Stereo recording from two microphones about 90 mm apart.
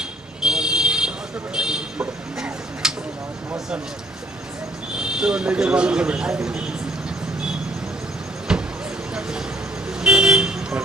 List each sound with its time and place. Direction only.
0.4 s buzzer: 5° right (ahead or behind)
4.9 s speech: 10° right (ahead or behind)
8.5 s vehicle: 5° right (ahead or behind)
9.8 s vehicle: 10° right (ahead or behind)